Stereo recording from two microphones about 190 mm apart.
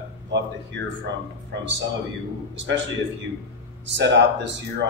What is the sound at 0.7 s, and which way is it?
Speech, 75° right (ahead or behind).